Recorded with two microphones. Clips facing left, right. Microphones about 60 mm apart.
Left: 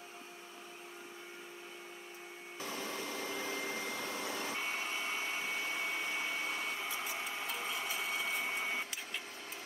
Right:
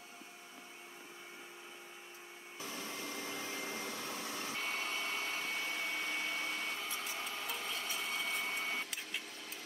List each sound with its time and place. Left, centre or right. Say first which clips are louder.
2.6 s vacuum cleaner: left 3 dB; left
3.4 s vacuum cleaner: left 3 dB; left
4.0 s vehicle: left 3 dB; left
4.6 s vacuum cleaner: left 1 dB; centre
7.4 s printer: left 2 dB; centre